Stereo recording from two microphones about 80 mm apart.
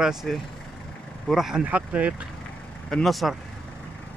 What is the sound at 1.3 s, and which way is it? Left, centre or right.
Speech, centre.